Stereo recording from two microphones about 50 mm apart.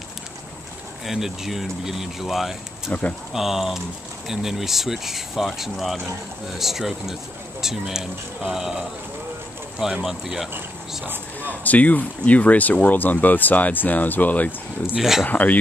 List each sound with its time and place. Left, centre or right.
1.0 s speech: centre
2.9 s speech: left
3.3 s speech: centre
10.0 s speech: centre
11.4 s speech: left
15.0 s speech: centre
15.2 s speech: left